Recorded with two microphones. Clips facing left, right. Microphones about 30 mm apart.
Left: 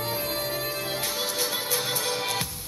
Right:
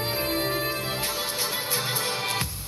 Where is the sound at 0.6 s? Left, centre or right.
Right.